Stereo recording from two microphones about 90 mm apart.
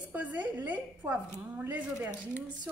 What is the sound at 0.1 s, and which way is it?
A woman's voice, 15° right (ahead or behind).